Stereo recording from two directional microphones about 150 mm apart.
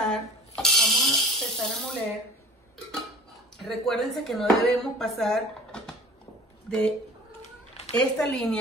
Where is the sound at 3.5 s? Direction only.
Centre (ahead or behind).